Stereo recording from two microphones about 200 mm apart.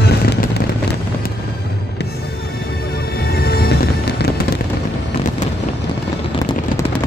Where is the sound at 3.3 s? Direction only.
50° left (ahead or behind).